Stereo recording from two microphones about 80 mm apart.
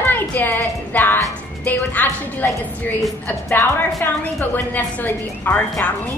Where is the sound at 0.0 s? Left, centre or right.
Left.